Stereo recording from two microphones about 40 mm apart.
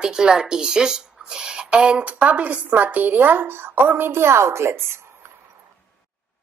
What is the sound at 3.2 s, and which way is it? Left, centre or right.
A woman's voice, right.